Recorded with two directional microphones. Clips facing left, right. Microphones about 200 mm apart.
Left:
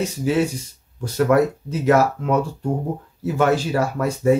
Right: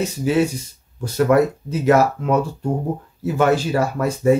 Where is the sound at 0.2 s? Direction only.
5° right (ahead or behind).